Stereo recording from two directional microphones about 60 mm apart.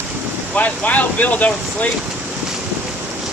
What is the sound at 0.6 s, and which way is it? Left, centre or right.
Speech, left.